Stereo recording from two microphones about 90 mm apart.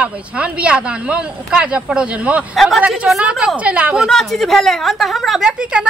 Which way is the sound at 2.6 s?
Centre (ahead or behind).